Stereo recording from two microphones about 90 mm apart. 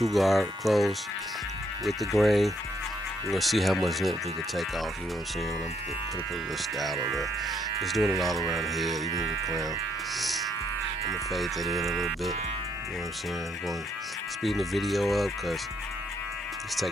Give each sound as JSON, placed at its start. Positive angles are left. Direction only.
{"t": 0.0, "sound": "speech", "side_deg": 0}
{"t": 7.8, "sound": "speech", "side_deg": 0}
{"t": 9.1, "sound": "speech", "side_deg": -45}
{"t": 10.1, "sound": "music", "side_deg": 0}
{"t": 11.1, "sound": "speech", "side_deg": 0}
{"t": 14.4, "sound": "speech", "side_deg": 0}